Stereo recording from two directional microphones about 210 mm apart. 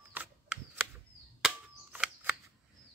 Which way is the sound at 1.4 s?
5° right (ahead or behind).